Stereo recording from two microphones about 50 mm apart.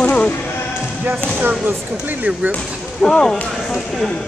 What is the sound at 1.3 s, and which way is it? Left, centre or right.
Basketball bounce, right.